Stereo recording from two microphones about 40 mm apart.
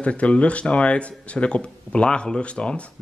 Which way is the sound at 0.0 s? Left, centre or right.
Left.